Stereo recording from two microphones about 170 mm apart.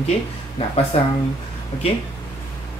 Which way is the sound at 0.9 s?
40° left (ahead or behind).